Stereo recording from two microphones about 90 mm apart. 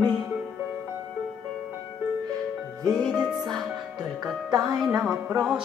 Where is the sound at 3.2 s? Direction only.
Centre (ahead or behind).